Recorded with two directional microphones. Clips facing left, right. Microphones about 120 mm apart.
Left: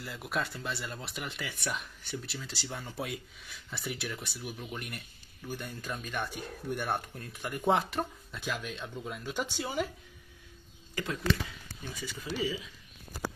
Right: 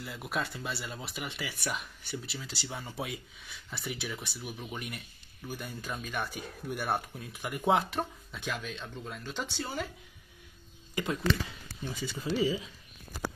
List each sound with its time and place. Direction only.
0.0 s speech: centre (ahead or behind)
11.0 s speech: 20° right (ahead or behind)